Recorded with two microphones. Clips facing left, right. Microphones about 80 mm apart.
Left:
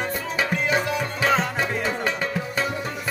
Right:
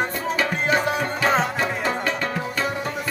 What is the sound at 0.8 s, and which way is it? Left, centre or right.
Music, right.